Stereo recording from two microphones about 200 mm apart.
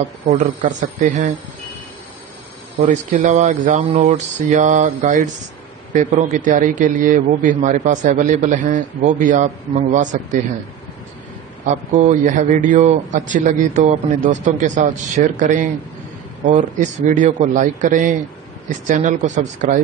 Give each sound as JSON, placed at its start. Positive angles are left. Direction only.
{"t": 0.3, "sound": "a man's voice", "side_deg": -35}
{"t": 2.9, "sound": "a man's voice", "side_deg": -35}
{"t": 11.6, "sound": "a man's voice", "side_deg": -40}